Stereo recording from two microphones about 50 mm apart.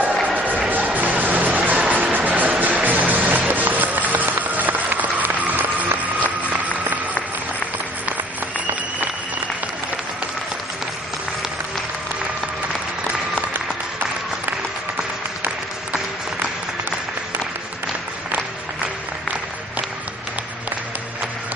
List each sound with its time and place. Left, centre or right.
0.4 s music: right